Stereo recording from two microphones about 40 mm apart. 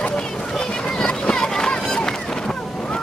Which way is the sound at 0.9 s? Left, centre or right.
Centre.